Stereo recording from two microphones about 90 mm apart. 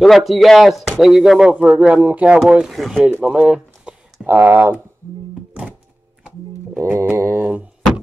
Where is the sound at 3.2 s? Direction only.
10° right (ahead or behind).